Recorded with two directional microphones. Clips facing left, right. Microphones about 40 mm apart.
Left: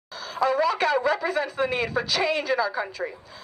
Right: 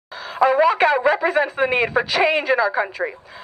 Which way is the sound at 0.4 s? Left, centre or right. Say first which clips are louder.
Right 7 dB; right.